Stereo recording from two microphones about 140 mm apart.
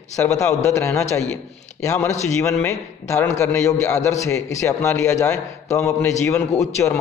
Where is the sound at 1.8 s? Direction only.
20° left (ahead or behind).